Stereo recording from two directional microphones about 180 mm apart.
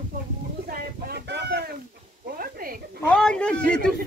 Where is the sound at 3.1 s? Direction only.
5° left (ahead or behind).